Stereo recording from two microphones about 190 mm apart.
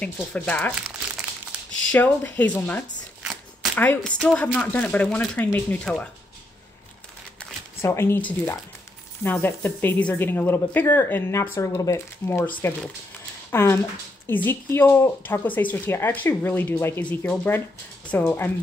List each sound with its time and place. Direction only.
0.0 s speech: 5° left (ahead or behind)
1.5 s a sound: 5° right (ahead or behind)
1.9 s speech: 10° left (ahead or behind)
7.3 s speech: 15° left (ahead or behind)